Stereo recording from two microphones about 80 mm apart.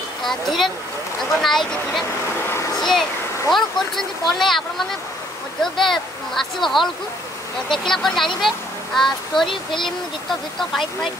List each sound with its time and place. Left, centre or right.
0.2 s speech: centre
2.4 s a sound: left
2.8 s a child's voice: centre
10.7 s speech: centre